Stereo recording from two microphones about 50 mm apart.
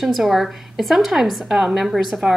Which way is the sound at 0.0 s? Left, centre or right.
Centre.